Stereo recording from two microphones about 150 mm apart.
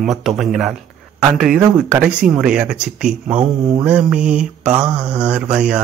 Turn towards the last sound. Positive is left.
turn(degrees=-5)  # may be behind; listen again after turning